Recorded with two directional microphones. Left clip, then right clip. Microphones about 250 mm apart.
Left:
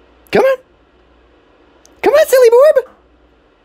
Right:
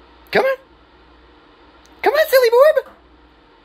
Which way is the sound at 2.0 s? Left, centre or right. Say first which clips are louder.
Left 5 dB; left.